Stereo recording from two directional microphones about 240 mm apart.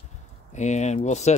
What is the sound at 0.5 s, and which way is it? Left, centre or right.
Speech, left.